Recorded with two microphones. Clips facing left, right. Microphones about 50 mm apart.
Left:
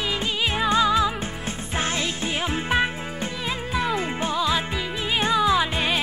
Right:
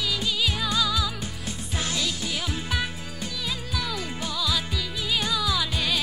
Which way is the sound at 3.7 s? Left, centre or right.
Left.